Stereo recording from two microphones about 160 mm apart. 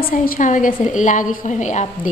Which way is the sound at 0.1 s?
55° left (ahead or behind).